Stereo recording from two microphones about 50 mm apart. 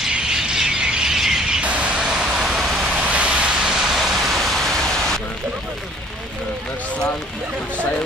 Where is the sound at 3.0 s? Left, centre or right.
Right; by 5.2 s centre.